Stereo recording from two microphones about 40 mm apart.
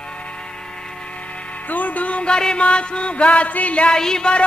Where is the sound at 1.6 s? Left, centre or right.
Left.